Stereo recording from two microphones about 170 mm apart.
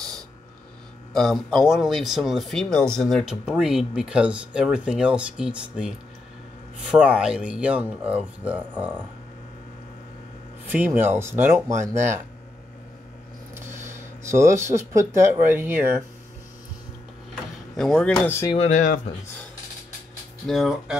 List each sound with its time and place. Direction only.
1.1 s speech: centre (ahead or behind)
10.7 s speech: 10° right (ahead or behind)
13.7 s a sound: 45° right (ahead or behind)
14.2 s speech: 15° right (ahead or behind)
17.7 s speech: 5° left (ahead or behind)
18.5 s speech: 40° left (ahead or behind)
20.4 s speech: centre (ahead or behind)